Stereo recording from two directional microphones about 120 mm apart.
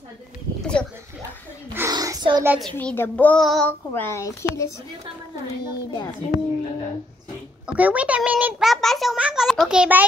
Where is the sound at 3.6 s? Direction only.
15° left (ahead or behind).